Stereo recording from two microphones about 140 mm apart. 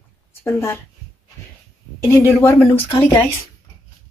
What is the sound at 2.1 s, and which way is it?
Speech, 20° left (ahead or behind).